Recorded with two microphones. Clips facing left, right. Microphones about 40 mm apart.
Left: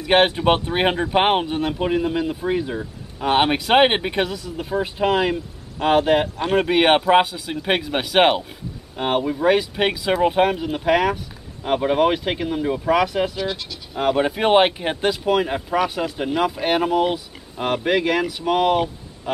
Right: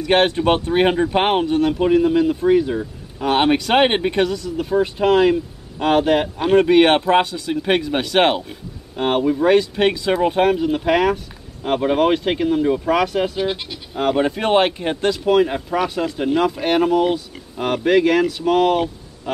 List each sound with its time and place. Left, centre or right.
0.0 s speech: centre
6.2 s speech: centre
6.5 s speech: centre
13.4 s speech: right
13.9 s speech: centre